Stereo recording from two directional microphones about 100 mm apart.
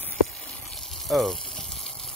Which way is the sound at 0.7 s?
Centre (ahead or behind).